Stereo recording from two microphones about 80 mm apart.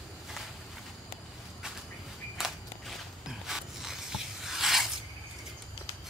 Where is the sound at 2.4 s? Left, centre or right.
Centre.